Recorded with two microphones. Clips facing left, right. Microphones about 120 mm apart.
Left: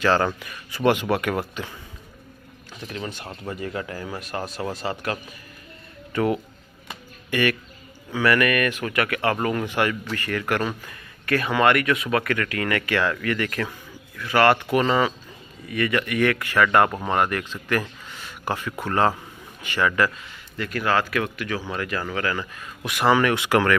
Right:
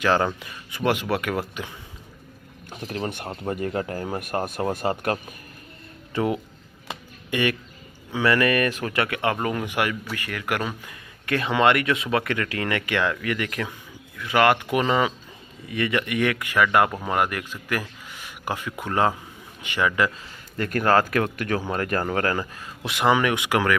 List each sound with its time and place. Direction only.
0.0 s speech: 10° right (ahead or behind)
1.1 s speech: centre (ahead or behind)
2.7 s speech: 50° right (ahead or behind)
3.4 s speech: 45° right (ahead or behind)
6.1 s speech: 20° right (ahead or behind)
6.9 s a sound: 20° right (ahead or behind)
8.1 s speech: 25° right (ahead or behind); by 10.8 s 5° right (ahead or behind)
10.9 s speech: 20° right (ahead or behind)
20.5 s speech: 45° right (ahead or behind)
22.8 s speech: 20° right (ahead or behind)